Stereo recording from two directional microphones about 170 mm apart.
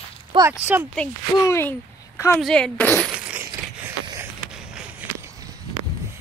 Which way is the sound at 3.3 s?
10° right (ahead or behind).